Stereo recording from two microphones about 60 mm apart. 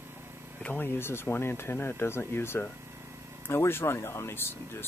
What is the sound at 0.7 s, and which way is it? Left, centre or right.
Speech, left.